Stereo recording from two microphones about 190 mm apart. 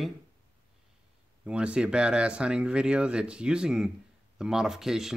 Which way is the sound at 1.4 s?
5° right (ahead or behind).